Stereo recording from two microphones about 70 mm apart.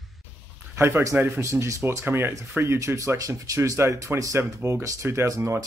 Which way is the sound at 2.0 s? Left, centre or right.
Right.